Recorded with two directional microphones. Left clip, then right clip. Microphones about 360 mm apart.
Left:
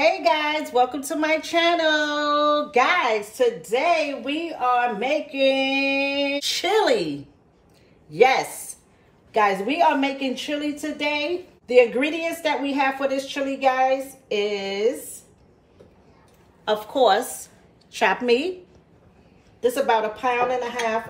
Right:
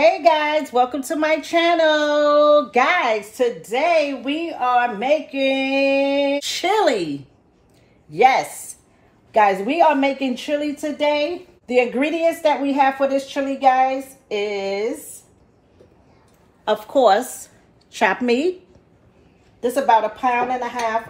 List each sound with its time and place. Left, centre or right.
0.0 s a woman's voice: centre
16.6 s a woman's voice: centre
19.6 s a woman's voice: centre